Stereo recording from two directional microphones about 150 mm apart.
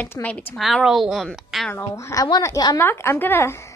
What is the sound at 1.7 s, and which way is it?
A woman's voice, 20° left (ahead or behind).